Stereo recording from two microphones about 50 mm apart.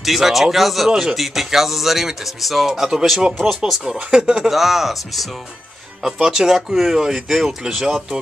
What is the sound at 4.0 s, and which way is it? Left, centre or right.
Speech, centre.